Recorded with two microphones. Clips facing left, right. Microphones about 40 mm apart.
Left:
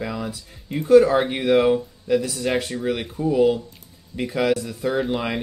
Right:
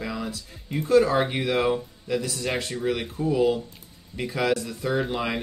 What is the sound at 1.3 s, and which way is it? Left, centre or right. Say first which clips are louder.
Speech: left 6 dB; centre.